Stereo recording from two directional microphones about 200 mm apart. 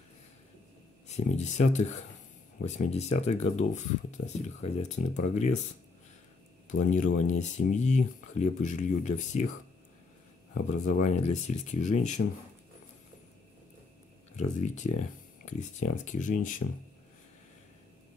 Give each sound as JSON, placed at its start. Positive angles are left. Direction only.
{"t": 1.0, "sound": "speech", "side_deg": 35}
{"t": 6.7, "sound": "speech", "side_deg": 40}
{"t": 10.7, "sound": "speech", "side_deg": 35}
{"t": 14.3, "sound": "speech", "side_deg": 35}